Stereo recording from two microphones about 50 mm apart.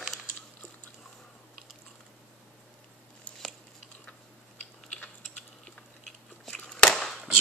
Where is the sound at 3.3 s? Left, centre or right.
Left.